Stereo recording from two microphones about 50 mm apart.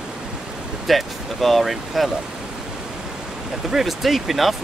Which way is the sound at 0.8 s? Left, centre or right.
Centre.